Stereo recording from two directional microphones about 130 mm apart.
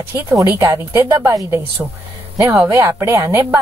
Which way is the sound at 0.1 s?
25° right (ahead or behind).